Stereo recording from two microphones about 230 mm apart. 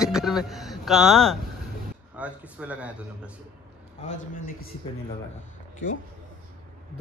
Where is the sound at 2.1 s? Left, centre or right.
Centre.